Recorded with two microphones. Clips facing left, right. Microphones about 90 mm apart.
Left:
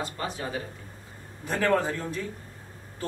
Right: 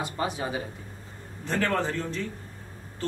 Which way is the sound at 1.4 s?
10° left (ahead or behind).